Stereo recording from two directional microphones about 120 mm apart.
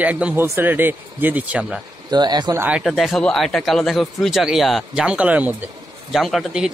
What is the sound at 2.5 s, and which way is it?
Speech, 10° right (ahead or behind).